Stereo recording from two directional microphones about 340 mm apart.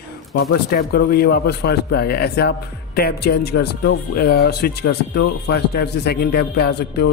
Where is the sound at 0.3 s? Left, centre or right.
Left.